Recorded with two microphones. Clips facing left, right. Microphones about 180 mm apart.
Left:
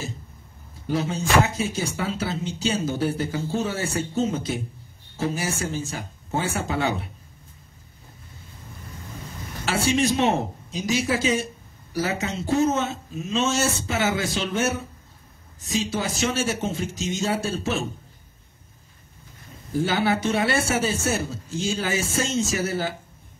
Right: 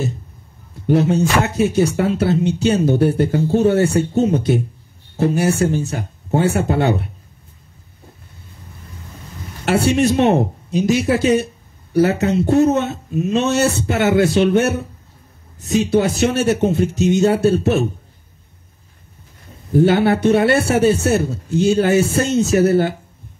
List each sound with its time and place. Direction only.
0.8 s speech: 60° right (ahead or behind)
9.7 s speech: 60° right (ahead or behind)
19.7 s speech: 60° right (ahead or behind)